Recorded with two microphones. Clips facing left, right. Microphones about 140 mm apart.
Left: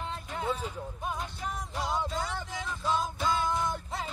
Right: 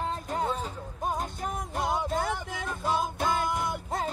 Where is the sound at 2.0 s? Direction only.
55° right (ahead or behind).